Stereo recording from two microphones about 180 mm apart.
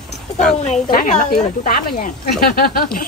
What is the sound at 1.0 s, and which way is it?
Speech, 45° left (ahead or behind).